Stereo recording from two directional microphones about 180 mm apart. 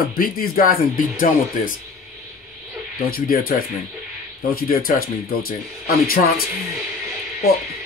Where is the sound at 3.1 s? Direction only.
55° left (ahead or behind).